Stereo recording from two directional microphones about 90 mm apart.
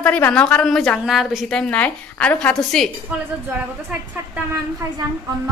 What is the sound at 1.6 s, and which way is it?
A woman's voice, 15° left (ahead or behind).